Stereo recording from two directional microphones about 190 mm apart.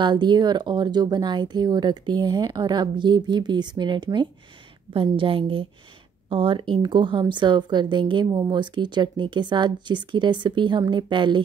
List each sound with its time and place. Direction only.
0.0 s a woman's voice: 25° right (ahead or behind)